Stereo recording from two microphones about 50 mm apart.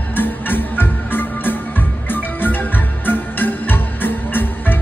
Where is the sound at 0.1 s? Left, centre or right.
Left.